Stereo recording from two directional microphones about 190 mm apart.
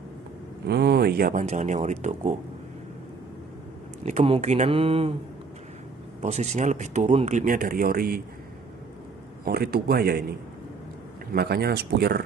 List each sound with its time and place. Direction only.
0.7 s speech: 60° right (ahead or behind)
1.5 s speech: 35° right (ahead or behind)
4.0 s speech: 35° right (ahead or behind)
6.2 s speech: 35° right (ahead or behind)
9.4 s speech: 55° right (ahead or behind)
11.3 s speech: 55° right (ahead or behind)